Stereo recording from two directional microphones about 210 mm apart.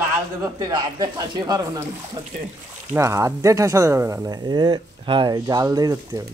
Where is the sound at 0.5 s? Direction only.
15° right (ahead or behind).